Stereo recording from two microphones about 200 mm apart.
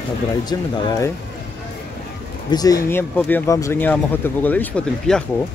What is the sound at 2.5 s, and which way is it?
Speech, 20° left (ahead or behind).